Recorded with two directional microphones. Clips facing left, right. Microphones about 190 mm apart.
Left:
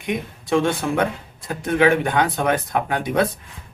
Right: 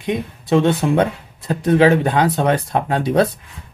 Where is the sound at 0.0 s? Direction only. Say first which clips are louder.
Right 4 dB; 25° right (ahead or behind).